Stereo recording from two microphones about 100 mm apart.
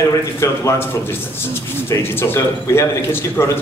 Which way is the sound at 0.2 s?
25° left (ahead or behind).